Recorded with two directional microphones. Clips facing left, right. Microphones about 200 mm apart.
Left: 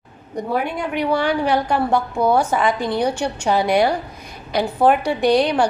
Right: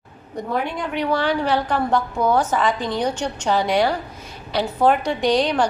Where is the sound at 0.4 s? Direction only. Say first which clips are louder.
Left 2 dB; 10° left (ahead or behind).